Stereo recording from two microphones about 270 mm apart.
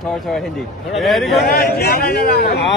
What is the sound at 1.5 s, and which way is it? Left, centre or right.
A man's voice, left.